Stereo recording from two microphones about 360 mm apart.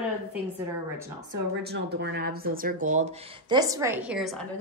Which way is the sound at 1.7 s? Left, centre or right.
Right.